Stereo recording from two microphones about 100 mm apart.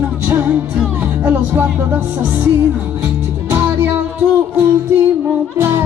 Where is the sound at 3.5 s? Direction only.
20° right (ahead or behind).